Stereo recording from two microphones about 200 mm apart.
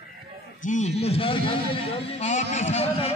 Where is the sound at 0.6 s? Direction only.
35° left (ahead or behind).